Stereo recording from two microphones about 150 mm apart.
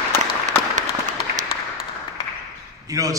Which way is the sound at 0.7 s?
55° right (ahead or behind).